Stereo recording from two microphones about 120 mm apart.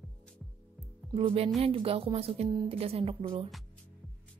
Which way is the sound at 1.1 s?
55° right (ahead or behind).